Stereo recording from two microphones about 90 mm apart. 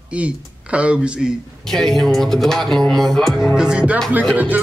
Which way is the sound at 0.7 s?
15° right (ahead or behind).